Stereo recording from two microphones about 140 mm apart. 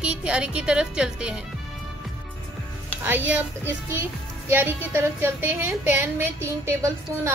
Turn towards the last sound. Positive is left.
turn(degrees=-20)  # may be behind; listen again after turning